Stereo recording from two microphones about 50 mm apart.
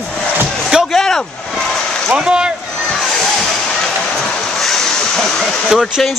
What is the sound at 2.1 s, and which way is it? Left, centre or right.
Speech, centre.